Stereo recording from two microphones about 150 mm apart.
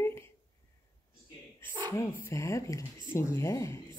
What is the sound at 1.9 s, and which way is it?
Speech, 20° left (ahead or behind).